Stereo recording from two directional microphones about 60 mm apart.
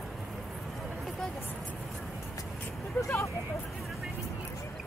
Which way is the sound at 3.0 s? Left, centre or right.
Left.